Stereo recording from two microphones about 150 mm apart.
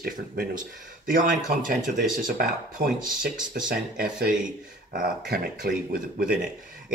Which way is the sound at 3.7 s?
75° right (ahead or behind).